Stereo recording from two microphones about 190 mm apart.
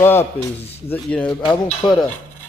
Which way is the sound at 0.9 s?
5° left (ahead or behind).